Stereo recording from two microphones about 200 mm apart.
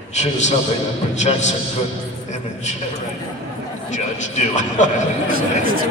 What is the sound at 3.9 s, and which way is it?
A man's voice, 35° left (ahead or behind).